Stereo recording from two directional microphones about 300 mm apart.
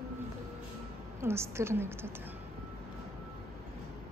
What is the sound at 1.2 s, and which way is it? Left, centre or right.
Speech, centre.